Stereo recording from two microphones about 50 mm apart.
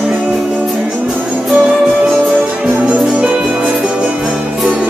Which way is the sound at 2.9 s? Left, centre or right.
Right.